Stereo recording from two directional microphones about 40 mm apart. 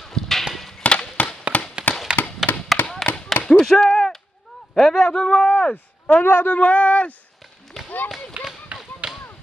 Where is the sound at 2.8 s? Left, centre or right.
Left.